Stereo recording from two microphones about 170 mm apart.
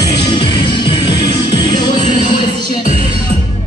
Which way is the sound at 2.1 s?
45° left (ahead or behind).